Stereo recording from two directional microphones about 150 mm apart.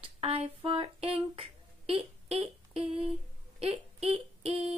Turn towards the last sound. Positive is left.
turn(degrees=-40)  # may be behind; listen again after turning